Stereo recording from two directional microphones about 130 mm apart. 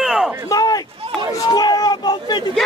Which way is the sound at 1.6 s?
30° left (ahead or behind).